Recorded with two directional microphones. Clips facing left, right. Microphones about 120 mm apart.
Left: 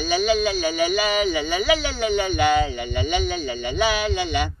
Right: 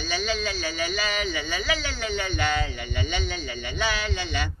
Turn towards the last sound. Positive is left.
turn(degrees=15)  # may be behind; listen again after turning